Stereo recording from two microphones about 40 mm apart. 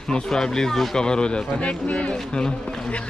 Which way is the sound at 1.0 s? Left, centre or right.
Left.